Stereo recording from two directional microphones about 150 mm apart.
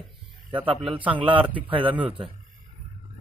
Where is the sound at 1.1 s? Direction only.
35° right (ahead or behind).